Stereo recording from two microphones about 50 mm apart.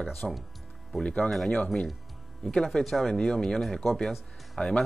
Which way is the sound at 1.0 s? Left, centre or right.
Centre.